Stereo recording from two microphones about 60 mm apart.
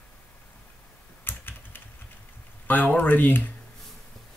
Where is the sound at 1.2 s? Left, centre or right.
Left.